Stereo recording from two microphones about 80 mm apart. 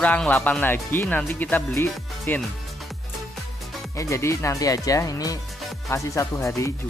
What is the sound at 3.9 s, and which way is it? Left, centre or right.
Speech, left.